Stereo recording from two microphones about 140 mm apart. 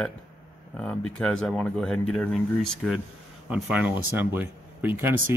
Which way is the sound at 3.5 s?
10° right (ahead or behind).